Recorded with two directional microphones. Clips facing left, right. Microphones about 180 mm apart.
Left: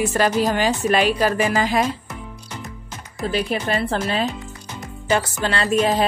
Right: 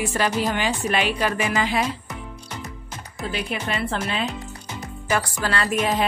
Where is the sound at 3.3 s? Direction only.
35° left (ahead or behind).